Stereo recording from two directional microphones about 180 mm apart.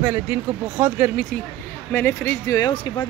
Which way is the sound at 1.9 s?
10° left (ahead or behind).